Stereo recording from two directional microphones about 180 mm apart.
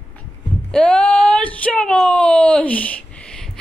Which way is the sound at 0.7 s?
5° left (ahead or behind).